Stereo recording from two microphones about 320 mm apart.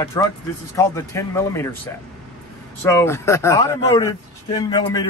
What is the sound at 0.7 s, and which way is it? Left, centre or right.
A man's voice, centre.